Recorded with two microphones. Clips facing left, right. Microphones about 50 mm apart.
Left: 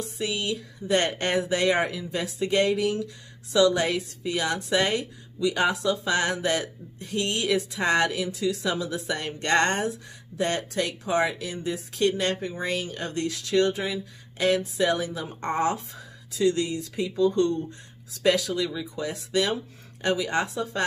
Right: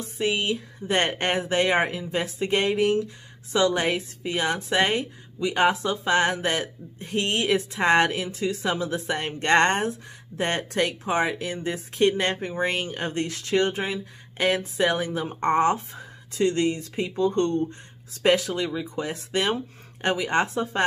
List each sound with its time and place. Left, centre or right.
0.2 s a woman's voice: right